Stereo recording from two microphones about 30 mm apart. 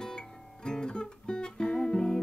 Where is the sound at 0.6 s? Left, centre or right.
Left.